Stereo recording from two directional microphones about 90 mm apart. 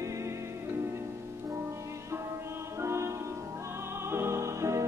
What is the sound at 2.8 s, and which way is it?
Music, 30° right (ahead or behind).